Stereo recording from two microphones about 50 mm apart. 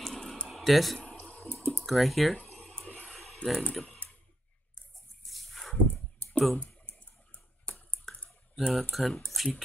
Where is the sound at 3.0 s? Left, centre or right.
Centre.